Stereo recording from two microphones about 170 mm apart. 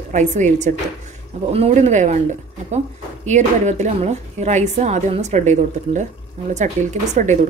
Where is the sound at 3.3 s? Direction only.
45° right (ahead or behind).